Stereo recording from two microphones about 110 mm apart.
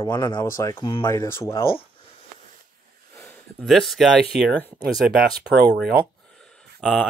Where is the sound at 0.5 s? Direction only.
25° left (ahead or behind).